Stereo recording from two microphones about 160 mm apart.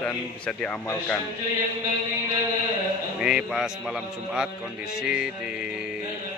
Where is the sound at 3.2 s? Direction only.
5° right (ahead or behind).